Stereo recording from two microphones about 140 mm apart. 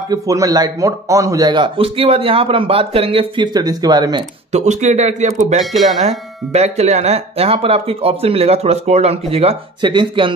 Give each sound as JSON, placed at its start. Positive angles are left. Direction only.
{"t": 0.1, "sound": "speech", "side_deg": -25}
{"t": 4.5, "sound": "speech", "side_deg": -55}
{"t": 5.6, "sound": "speech", "side_deg": 0}
{"t": 5.9, "sound": "speech", "side_deg": -50}